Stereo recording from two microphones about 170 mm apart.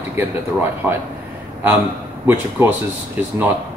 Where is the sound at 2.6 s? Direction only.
15° right (ahead or behind).